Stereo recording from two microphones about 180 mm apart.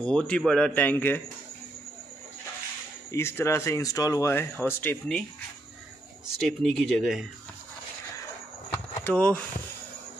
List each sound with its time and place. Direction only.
0.0 s speech: 5° left (ahead or behind)
3.1 s speech: 15° left (ahead or behind)
6.4 s speech: centre (ahead or behind)
9.0 s speech: 5° left (ahead or behind)